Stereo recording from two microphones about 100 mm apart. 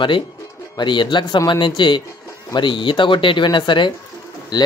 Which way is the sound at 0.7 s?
50° left (ahead or behind).